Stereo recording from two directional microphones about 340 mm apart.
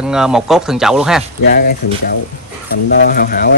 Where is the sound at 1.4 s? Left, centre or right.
Left.